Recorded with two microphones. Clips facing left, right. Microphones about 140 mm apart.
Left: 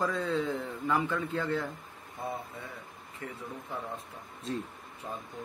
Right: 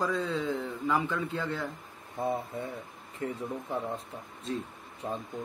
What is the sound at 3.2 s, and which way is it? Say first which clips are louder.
Speech: right 8 dB; 30° right (ahead or behind).